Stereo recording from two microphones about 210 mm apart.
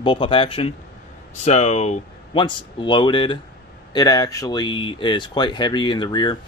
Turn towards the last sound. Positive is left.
turn(degrees=20)  # may be behind; listen again after turning